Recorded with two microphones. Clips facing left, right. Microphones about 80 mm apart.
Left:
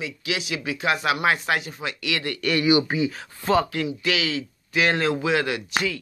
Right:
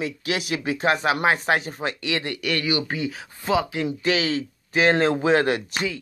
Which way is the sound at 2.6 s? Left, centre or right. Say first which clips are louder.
Left 9 dB; centre.